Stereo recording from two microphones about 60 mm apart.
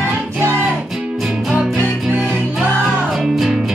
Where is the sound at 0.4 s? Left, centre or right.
Right.